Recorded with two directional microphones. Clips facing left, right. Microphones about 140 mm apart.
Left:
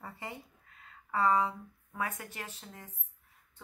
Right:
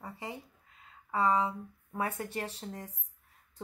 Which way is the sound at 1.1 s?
20° right (ahead or behind).